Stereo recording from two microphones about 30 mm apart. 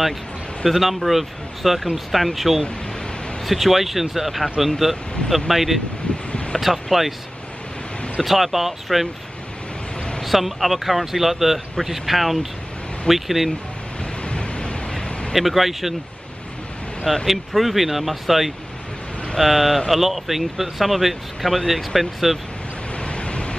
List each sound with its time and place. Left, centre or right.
0.7 s speech: centre
6.1 s a sound: left
6.6 s speech: centre
8.2 s speech: centre
10.2 s speech: centre
14.2 s a sound: left
15.3 s speech: centre
17.3 s speech: centre
23.0 s waves: left